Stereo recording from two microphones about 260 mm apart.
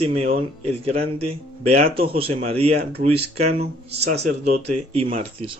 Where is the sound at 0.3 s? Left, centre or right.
Right.